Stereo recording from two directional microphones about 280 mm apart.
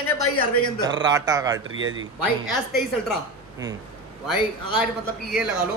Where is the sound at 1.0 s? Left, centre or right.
Centre.